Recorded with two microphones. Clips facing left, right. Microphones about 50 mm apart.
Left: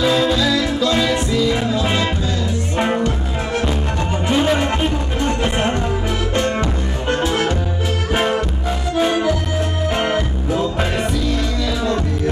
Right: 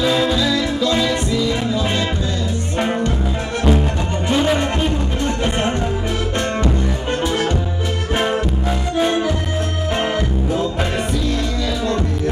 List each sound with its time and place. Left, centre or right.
0.0 s music: centre
4.3 s music: centre
7.2 s music: left
8.1 s music: centre
8.6 s accordion: centre
9.8 s music: centre